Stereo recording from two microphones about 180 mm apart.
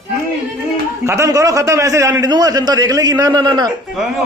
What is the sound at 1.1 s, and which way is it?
A man's voice, 15° right (ahead or behind).